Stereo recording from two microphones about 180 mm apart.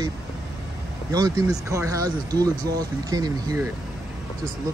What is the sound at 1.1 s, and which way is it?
Speech, 20° right (ahead or behind).